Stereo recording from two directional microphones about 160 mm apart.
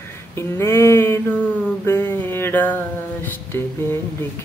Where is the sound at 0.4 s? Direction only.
15° left (ahead or behind).